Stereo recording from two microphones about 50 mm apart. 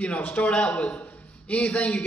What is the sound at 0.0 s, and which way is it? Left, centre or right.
Speech, left.